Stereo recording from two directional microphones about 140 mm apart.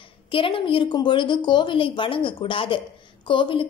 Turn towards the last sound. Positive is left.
turn(degrees=35)  # may be behind; listen again after turning